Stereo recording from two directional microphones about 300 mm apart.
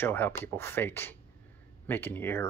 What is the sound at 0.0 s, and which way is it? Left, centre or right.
Speech, centre.